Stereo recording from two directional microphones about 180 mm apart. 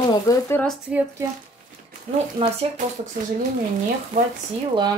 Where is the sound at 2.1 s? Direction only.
35° right (ahead or behind).